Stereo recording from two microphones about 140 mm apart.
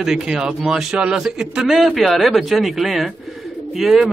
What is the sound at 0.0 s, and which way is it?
A man's voice, 5° right (ahead or behind).